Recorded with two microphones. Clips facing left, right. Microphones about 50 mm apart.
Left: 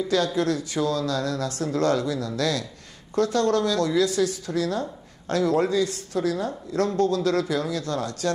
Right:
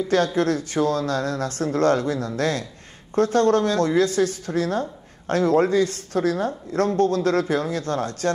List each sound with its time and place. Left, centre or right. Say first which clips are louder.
0.1 s a woman's voice: right 3 dB; right